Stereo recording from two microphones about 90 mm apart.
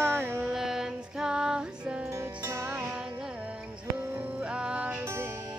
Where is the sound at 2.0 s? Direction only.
30° right (ahead or behind).